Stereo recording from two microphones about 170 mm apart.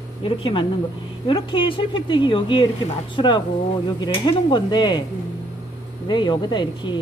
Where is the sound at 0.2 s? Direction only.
30° left (ahead or behind).